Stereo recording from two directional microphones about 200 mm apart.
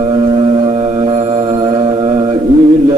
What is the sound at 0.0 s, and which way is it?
Music, 30° right (ahead or behind).